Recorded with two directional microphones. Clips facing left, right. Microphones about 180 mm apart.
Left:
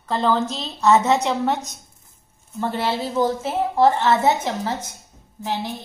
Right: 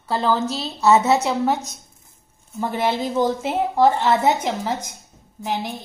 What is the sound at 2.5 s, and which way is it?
A woman's voice, 15° right (ahead or behind).